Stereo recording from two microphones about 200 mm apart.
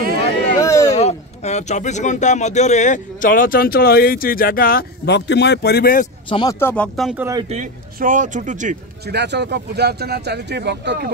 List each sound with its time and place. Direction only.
0.6 s a sound: 15° left (ahead or behind)
0.9 s speech: 35° left (ahead or behind); by 6.0 s 50° left (ahead or behind)
6.2 s speech: 25° left (ahead or behind)
6.6 s speech: 5° left (ahead or behind)
7.4 s speech: 40° right (ahead or behind)
9.0 s speech: 55° right (ahead or behind)